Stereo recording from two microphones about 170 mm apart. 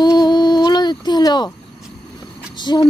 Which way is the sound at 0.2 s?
25° left (ahead or behind).